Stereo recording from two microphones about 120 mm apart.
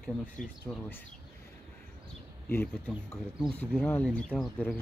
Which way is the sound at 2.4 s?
15° left (ahead or behind).